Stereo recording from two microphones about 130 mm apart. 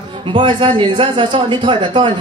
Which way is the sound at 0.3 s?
40° right (ahead or behind).